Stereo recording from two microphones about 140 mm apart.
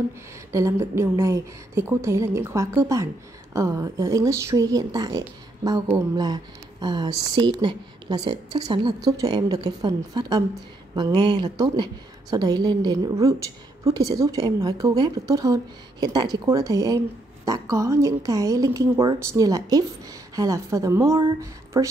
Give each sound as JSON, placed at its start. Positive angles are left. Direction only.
{"t": 0.5, "sound": "speech", "side_deg": -20}